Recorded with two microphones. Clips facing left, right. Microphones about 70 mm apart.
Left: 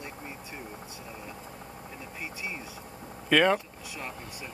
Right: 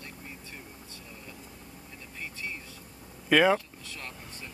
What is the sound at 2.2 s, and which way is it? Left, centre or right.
Speech, centre.